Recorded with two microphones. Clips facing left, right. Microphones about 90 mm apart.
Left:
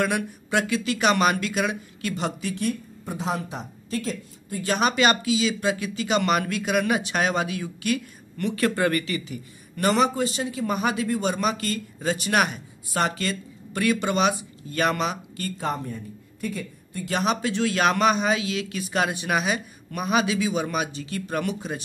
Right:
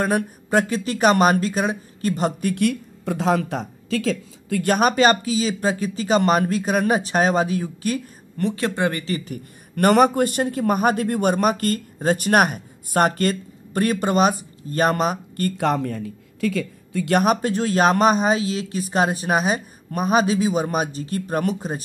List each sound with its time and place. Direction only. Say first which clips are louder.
0.0 s speech: right 3 dB; 40° right (ahead or behind)
2.5 s speech: right 6 dB; 70° right (ahead or behind); by 4.6 s 90° right
4.6 s speech: right 4 dB; 45° right (ahead or behind); by 9.0 s 25° right (ahead or behind)
9.0 s a man's voice: right 3 dB; 40° right (ahead or behind)
15.5 s speech: right 6 dB; 75° right (ahead or behind); by 21.8 s 40° right (ahead or behind)